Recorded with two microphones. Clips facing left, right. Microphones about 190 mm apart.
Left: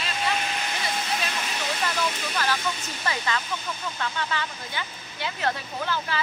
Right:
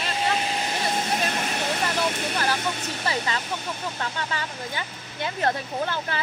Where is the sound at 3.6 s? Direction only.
35° right (ahead or behind).